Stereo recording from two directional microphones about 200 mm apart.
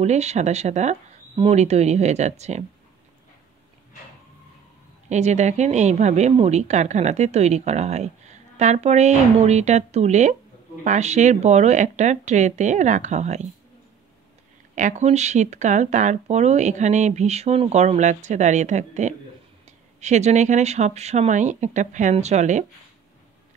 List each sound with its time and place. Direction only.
0.0 s speech: 35° right (ahead or behind)
5.1 s speech: 35° right (ahead or behind)
14.8 s speech: 35° right (ahead or behind)